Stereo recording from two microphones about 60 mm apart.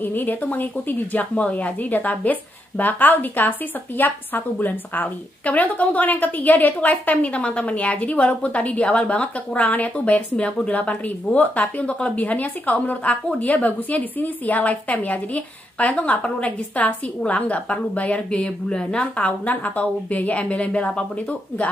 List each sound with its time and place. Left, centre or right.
0.0 s a woman's voice: left; by 19.2 s centre
19.2 s a woman's voice: left